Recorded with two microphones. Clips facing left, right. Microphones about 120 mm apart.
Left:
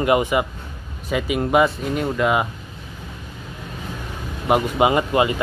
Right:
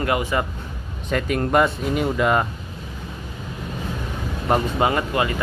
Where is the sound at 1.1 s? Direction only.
5° left (ahead or behind).